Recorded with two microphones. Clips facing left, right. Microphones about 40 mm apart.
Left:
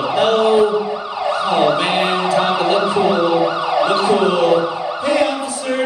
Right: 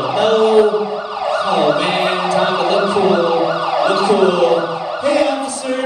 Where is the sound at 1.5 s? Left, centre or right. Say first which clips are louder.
Even; left.